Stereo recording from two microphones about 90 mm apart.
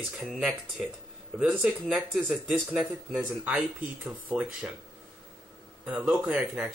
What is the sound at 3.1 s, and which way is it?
Speech, 15° right (ahead or behind).